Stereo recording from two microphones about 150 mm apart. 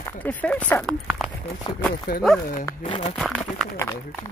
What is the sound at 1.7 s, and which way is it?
Speech, 30° left (ahead or behind).